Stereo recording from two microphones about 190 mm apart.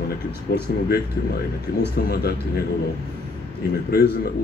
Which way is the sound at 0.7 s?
55° left (ahead or behind).